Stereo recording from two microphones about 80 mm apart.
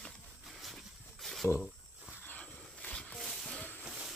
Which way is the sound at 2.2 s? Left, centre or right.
Centre.